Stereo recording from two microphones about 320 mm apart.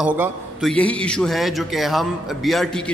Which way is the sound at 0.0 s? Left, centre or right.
Centre.